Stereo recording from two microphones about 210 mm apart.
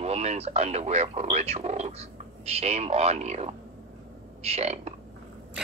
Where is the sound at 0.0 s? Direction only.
30° right (ahead or behind).